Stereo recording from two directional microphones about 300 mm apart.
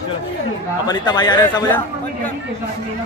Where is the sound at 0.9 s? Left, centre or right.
Centre.